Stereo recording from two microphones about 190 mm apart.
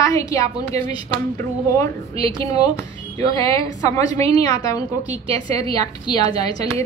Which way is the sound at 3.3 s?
15° left (ahead or behind).